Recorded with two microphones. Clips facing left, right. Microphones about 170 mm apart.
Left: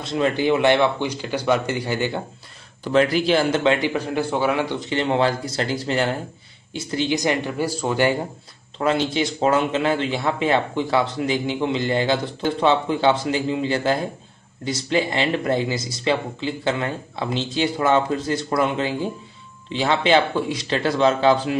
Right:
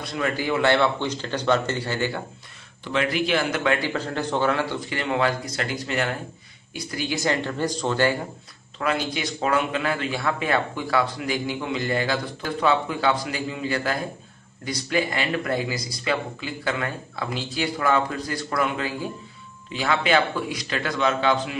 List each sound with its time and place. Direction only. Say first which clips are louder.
0.0 s speech: left 6 dB; 25° left (ahead or behind)
2.8 s a man's voice: left 6 dB; 40° left (ahead or behind); by 8.2 s 15° left (ahead or behind)
8.7 s a man's voice: left 5 dB; 25° left (ahead or behind)